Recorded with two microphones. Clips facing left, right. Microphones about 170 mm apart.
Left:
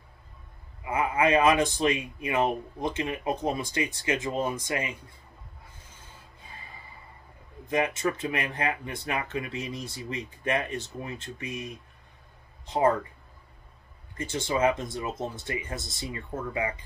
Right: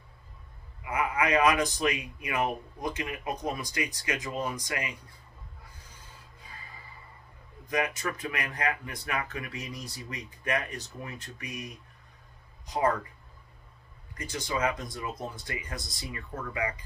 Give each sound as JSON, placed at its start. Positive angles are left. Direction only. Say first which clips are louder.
{"t": 0.8, "sound": "a man's voice", "louder": "left 4 dB", "side_deg": 25}
{"t": 7.6, "sound": "a man's voice", "louder": "left 4 dB", "side_deg": 25}
{"t": 14.1, "sound": "a man's voice", "louder": "left 4 dB", "side_deg": 25}